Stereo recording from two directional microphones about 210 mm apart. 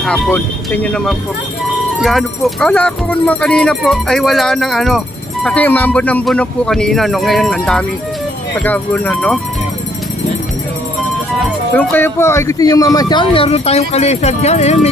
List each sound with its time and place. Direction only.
0.0 s speech: 5° left (ahead or behind)
11.7 s speech: 10° left (ahead or behind); by 14.9 s 30° left (ahead or behind)